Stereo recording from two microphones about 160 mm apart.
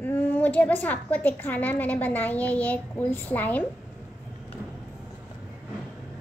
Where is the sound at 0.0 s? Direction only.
10° left (ahead or behind).